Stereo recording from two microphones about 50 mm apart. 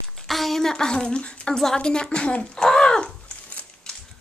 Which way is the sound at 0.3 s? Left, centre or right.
Centre.